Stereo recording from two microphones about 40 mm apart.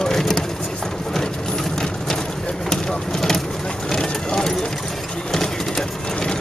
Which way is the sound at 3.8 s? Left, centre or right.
Centre.